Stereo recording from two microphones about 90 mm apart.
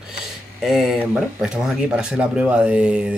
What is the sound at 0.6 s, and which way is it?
Speech, 5° right (ahead or behind).